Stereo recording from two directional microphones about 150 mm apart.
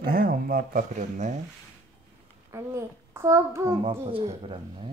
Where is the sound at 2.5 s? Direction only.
20° right (ahead or behind).